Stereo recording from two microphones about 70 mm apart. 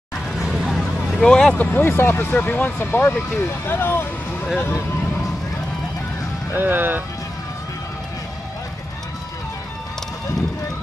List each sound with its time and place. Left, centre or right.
0.4 s hubbub: centre
1.1 s speech: centre
1.5 s speech: left
1.8 s speech: left
6.5 s speech: right